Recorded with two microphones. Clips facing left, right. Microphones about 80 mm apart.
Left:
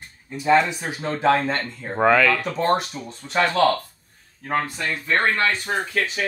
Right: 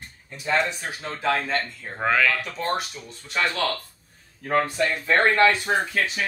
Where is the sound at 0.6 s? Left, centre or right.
Centre.